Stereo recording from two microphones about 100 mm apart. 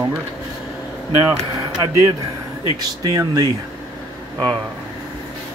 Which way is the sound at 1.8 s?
35° right (ahead or behind).